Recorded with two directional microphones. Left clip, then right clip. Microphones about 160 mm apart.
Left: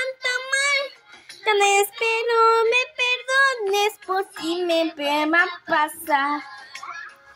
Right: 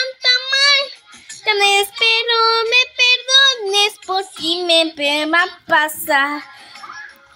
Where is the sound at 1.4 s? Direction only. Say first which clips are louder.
Right 4 dB; 5° left (ahead or behind).